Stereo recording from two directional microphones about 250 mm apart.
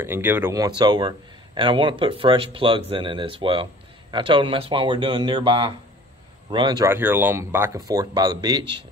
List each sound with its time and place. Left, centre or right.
0.0 s a man's voice: centre